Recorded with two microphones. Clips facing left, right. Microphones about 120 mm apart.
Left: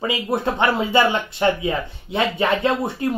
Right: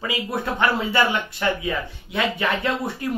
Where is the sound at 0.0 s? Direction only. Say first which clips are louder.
Left 4 dB; 25° left (ahead or behind).